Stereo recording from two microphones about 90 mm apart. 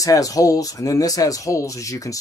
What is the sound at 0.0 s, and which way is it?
Speech, 40° left (ahead or behind).